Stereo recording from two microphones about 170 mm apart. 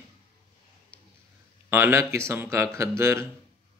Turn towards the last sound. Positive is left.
turn(degrees=-15)  # may be behind; listen again after turning